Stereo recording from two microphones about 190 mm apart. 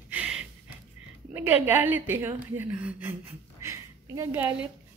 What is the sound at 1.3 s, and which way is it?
A woman's voice, 10° right (ahead or behind).